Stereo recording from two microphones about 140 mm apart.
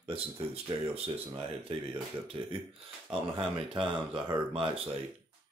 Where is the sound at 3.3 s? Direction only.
35° right (ahead or behind).